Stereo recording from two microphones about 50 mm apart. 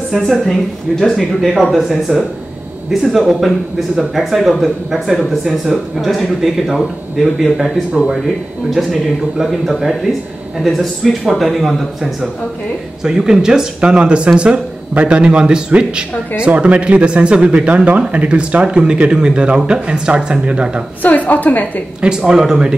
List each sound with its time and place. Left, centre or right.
0.5 s speech: centre
7.9 s speech: centre
8.6 s speech: centre
21.0 s a woman's voice: left
22.0 s speech: centre